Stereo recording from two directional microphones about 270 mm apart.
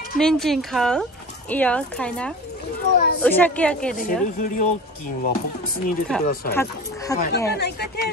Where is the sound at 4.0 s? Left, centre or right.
Left.